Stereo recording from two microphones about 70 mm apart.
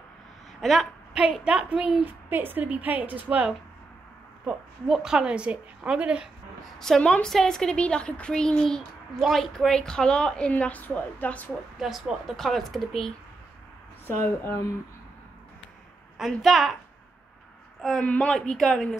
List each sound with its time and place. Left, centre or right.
0.6 s a woman's voice: centre
1.4 s a woman's voice: centre
2.0 s a woman's voice: right
4.5 s a woman's voice: centre
6.6 s a woman's voice: centre
10.5 s a woman's voice: left
11.8 s speech: centre
14.0 s speech: left
16.3 s speech: centre
18.0 s a woman's voice: centre